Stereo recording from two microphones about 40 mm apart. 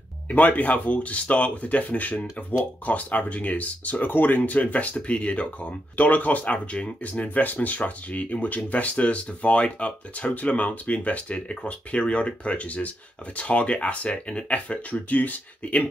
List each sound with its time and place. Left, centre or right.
0.3 s speech: left